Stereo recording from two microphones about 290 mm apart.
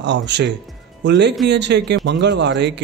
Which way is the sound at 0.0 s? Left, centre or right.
Right.